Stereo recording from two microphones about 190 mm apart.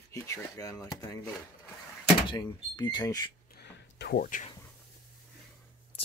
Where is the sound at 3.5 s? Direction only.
60° left (ahead or behind).